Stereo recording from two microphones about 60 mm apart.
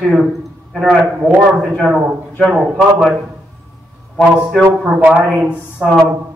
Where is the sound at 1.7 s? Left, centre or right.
Centre.